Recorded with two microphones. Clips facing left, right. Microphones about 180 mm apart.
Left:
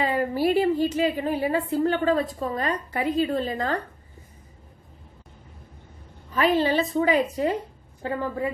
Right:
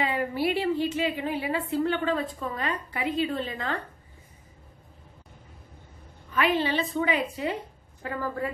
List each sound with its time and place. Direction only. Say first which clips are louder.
0.0 s a woman's voice: left 4 dB; 40° left (ahead or behind)
6.3 s a woman's voice: left 4 dB; 40° left (ahead or behind)
8.0 s a woman's voice: left 3 dB; 20° left (ahead or behind)